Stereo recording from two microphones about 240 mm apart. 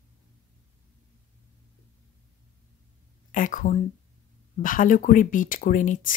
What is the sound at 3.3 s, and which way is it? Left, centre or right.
Speech, left.